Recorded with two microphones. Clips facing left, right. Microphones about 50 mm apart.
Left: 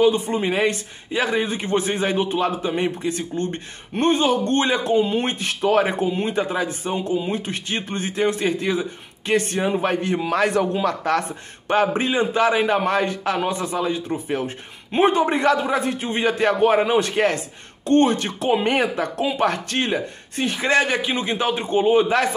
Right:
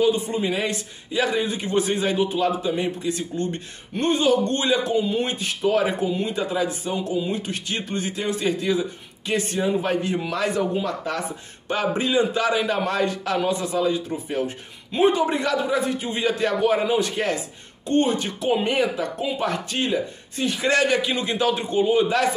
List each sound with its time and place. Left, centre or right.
0.0 s speech: left
10.5 s speech: left
11.6 s speech: left